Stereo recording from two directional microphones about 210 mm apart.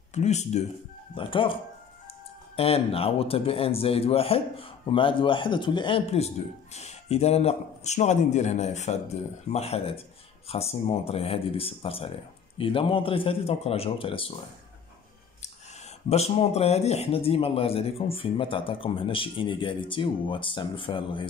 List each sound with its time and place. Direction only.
0.1 s speech: 30° left (ahead or behind)
16.1 s speech: 30° left (ahead or behind)